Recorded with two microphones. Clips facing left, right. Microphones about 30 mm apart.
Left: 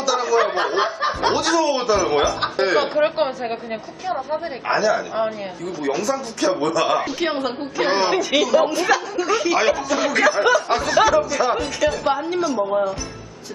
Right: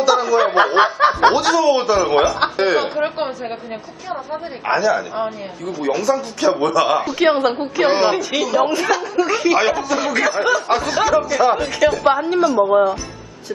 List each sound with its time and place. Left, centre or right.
0.0 s snicker: centre
1.3 s speech: centre
2.5 s chuckle: centre
2.8 s speech: centre
7.8 s speech: centre
9.1 s speech: centre
11.2 s speech: centre
12.6 s speech: right